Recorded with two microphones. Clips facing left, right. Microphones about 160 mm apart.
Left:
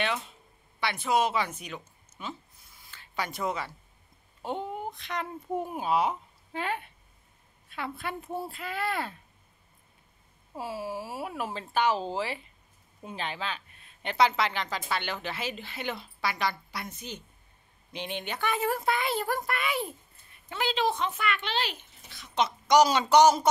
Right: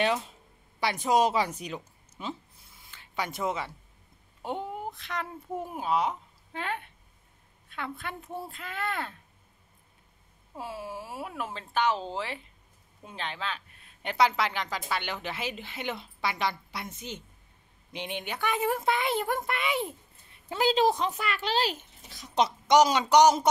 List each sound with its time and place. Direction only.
0.7 s a woman's voice: 40° right (ahead or behind)
2.9 s speech: 20° right (ahead or behind)
4.4 s a woman's voice: 10° right (ahead or behind); by 9.1 s 10° left (ahead or behind)
10.6 s a woman's voice: 5° left (ahead or behind)
14.0 s a woman's voice: 10° right (ahead or behind)
20.4 s speech: 40° right (ahead or behind)
22.7 s a woman's voice: 20° right (ahead or behind)